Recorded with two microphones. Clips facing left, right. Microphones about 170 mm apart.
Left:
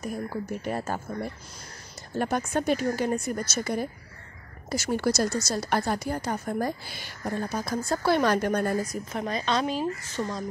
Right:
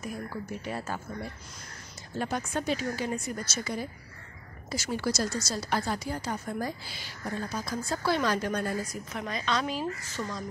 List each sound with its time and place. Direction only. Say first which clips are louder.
0.0 s a woman's voice: left 4 dB; 40° left (ahead or behind)
2.1 s a woman's voice: left 5 dB; 55° left (ahead or behind)
9.1 s a woman's voice: left 3 dB; 30° left (ahead or behind)